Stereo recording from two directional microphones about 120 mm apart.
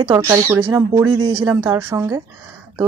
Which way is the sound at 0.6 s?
35° right (ahead or behind).